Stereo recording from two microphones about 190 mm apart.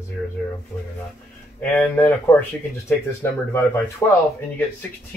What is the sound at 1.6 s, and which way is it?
Speech, 10° left (ahead or behind).